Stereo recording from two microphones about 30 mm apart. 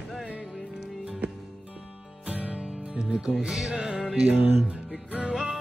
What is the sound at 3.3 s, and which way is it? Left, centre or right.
Music, centre.